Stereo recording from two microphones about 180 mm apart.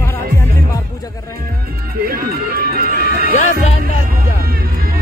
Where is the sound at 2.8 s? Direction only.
55° right (ahead or behind).